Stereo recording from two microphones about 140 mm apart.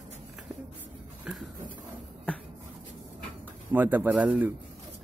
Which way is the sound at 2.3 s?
10° left (ahead or behind).